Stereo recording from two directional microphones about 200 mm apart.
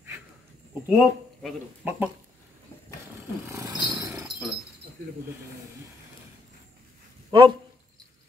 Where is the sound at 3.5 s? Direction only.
15° right (ahead or behind).